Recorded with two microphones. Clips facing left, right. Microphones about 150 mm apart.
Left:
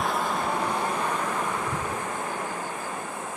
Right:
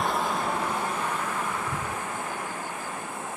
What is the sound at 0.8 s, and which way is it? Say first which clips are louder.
Vehicle: left 2 dB; 15° left (ahead or behind).